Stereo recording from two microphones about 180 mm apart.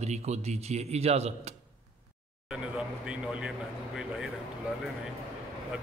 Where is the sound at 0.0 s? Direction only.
40° right (ahead or behind).